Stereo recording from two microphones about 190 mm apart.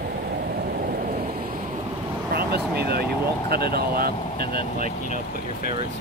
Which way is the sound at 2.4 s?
55° right (ahead or behind).